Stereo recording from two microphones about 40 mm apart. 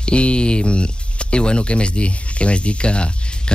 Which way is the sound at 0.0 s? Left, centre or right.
Left.